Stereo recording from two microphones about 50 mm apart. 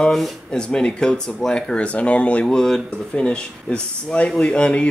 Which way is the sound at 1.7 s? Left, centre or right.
Left.